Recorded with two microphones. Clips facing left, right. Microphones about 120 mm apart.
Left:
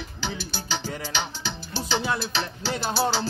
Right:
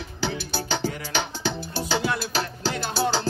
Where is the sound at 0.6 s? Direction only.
50° right (ahead or behind).